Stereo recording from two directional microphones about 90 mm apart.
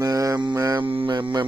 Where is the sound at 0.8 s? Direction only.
80° right; by 1.4 s 60° right (ahead or behind).